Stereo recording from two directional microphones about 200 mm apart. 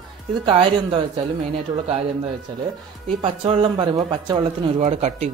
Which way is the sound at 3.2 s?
25° right (ahead or behind).